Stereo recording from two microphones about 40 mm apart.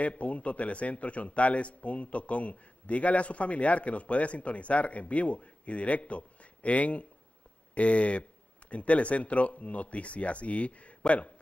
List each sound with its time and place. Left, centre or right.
0.0 s a man's voice: left